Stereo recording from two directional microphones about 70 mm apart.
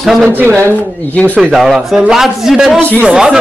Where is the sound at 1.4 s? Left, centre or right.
Centre.